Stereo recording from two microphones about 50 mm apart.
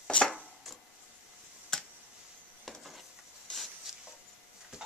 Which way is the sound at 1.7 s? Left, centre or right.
Centre.